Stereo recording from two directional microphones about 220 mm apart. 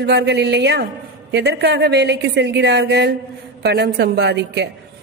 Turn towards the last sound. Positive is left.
turn(degrees=-50)  # may be behind; listen again after turning